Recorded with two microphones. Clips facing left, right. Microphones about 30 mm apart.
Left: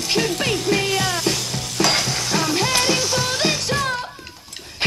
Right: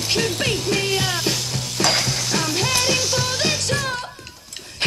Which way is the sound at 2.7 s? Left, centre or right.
Centre.